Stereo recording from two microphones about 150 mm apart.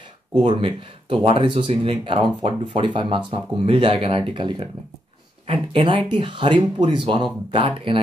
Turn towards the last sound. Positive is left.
turn(degrees=-35)  # may be behind; listen again after turning